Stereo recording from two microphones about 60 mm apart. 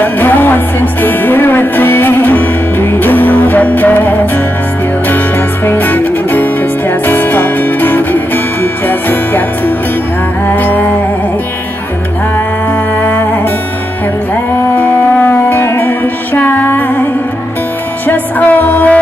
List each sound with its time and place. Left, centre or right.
0.0 s music: left
5.7 s music: left
14.8 s music: left